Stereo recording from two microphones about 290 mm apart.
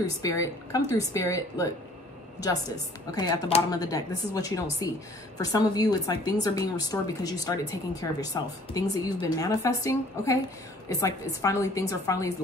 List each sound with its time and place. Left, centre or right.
0.0 s a woman's voice: centre